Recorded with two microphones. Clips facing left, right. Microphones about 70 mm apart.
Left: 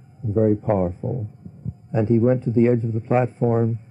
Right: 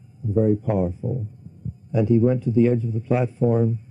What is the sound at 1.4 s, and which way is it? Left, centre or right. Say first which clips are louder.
Heart sounds: left 3 dB; left.